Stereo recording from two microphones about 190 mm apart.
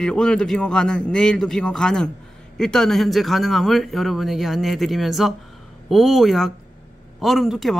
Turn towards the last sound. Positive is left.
turn(degrees=0)  # may be behind; listen again after turning